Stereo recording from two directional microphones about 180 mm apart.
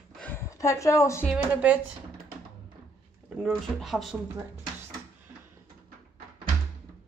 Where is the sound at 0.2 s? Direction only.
15° left (ahead or behind).